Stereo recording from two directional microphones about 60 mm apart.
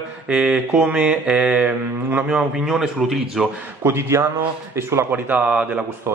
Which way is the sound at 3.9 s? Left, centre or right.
Right.